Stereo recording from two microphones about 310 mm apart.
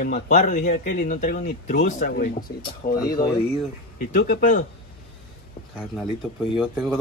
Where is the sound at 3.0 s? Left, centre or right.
Centre.